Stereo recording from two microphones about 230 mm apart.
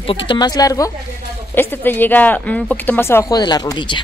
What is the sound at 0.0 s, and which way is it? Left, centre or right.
A woman's voice, left.